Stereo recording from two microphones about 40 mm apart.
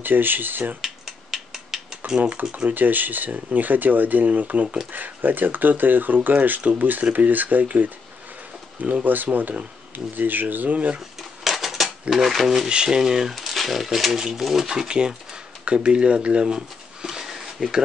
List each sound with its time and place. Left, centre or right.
0.0 s speech: right
0.7 s a sound: centre
2.7 s speech: right
4.9 s speech: right
9.0 s speech: right
11.0 s dishes: centre
12.1 s speech: centre
12.6 s speech: right
13.3 s speech: centre
14.7 s speech: centre
16.5 s a sound: centre